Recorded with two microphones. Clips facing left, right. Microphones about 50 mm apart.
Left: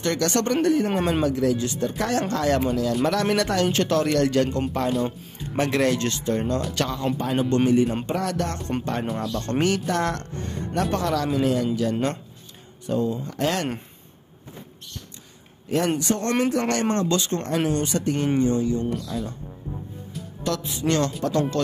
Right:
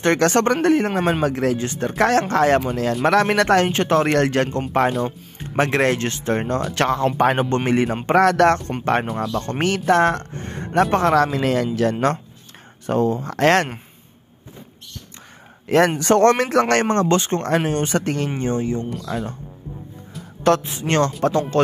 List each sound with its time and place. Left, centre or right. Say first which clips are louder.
0.0 s speech: right 6 dB; right
3.6 s speech: right 3 dB; right
9.2 s speech: right 3 dB; right
9.6 s speech: right 6 dB; right
11.3 s speech: right 2 dB; right
15.6 s a sound: right 8 dB; right
16.0 s speech: right 8 dB; right
16.9 s speech: right 5 dB; right
18.0 s speech: right 1 dB; right
18.4 s speech: even; right
20.4 s speech: right 7 dB; right